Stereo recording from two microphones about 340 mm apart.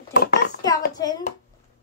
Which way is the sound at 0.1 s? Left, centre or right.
Left.